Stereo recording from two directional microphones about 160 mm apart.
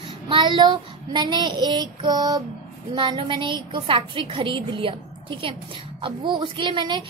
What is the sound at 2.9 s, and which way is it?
Speech, 30° right (ahead or behind).